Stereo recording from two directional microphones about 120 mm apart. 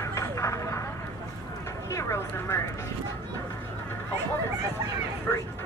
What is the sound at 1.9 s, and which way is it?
Speech, 25° left (ahead or behind).